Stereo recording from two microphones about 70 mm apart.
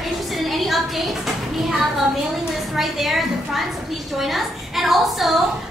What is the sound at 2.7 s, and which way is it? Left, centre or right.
A woman's voice, centre.